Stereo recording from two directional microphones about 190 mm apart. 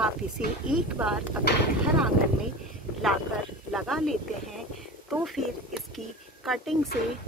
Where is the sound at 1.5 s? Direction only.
60° left (ahead or behind).